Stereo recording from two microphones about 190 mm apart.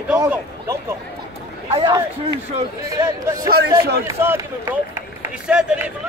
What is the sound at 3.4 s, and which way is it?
Speech, 55° right (ahead or behind).